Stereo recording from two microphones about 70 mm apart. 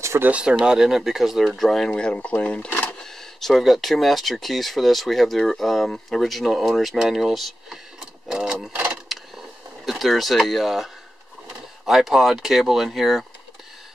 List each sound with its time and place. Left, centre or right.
0.2 s speech: centre
1.9 s speech: centre
9.1 s vehicle: centre
9.8 s speech: centre